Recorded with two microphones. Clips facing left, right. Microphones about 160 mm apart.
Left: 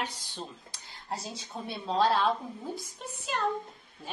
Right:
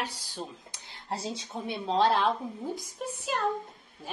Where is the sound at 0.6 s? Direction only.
25° right (ahead or behind).